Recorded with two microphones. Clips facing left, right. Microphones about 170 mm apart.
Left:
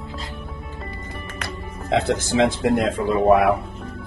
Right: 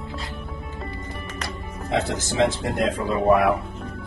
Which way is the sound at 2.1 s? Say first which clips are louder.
Left 3 dB; 60° left (ahead or behind).